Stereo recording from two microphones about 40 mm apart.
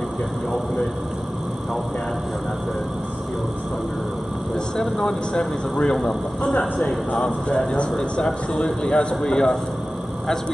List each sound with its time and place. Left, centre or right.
4.7 s speech: centre
7.2 s a man's voice: left
8.3 s a man's voice: centre